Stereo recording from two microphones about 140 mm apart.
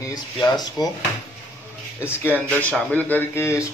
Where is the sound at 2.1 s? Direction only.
15° left (ahead or behind).